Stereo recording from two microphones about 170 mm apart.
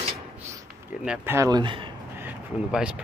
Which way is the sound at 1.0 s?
10° right (ahead or behind).